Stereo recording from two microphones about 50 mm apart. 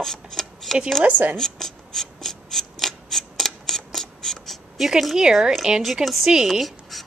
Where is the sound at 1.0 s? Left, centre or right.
Right.